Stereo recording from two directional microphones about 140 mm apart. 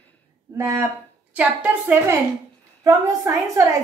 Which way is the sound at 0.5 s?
20° right (ahead or behind).